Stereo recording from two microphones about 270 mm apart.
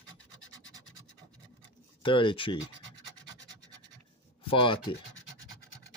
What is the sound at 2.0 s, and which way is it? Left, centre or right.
Speech, centre.